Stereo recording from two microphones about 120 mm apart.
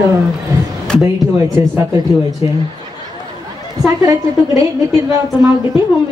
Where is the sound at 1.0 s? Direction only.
25° right (ahead or behind).